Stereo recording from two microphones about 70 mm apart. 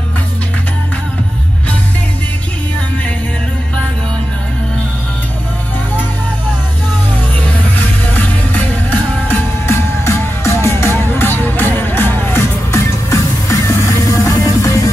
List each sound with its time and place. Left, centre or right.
7.4 s music: left
9.7 s music: left